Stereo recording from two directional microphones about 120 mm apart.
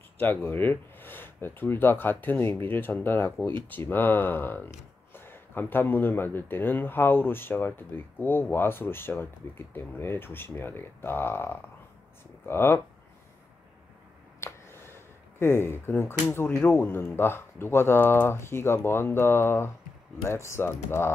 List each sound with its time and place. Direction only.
0.2 s speech: 15° left (ahead or behind)
14.4 s speech: 20° left (ahead or behind)